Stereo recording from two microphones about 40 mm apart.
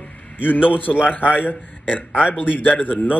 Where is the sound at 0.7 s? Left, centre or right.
Left.